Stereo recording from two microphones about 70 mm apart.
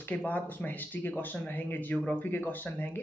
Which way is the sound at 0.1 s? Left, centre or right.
Left.